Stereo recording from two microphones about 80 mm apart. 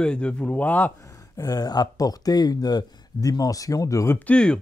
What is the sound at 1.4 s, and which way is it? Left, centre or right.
Speech, left.